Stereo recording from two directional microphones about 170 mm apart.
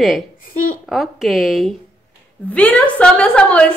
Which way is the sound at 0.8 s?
Centre (ahead or behind).